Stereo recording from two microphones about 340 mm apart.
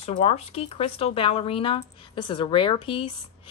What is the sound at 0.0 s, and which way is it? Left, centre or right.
A woman's voice, centre.